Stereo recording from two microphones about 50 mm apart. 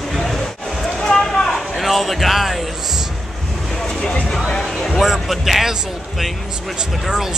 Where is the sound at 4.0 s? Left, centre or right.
Centre.